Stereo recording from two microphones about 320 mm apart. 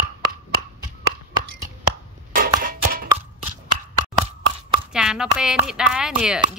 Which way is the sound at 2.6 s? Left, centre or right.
Right.